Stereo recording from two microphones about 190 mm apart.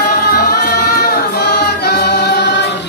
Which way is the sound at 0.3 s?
55° left (ahead or behind).